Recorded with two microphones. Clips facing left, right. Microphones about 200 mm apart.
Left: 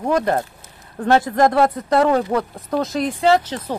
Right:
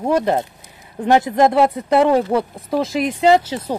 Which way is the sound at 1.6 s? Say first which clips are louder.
Right 2 dB; 10° right (ahead or behind).